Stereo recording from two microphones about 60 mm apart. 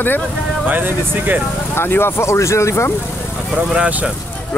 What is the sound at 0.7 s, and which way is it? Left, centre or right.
Speech, right.